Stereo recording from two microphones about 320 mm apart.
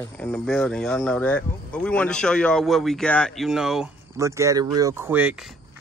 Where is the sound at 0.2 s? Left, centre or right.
Centre.